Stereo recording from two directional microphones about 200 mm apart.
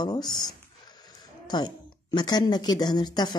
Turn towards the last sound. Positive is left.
turn(degrees=20)  # may be behind; listen again after turning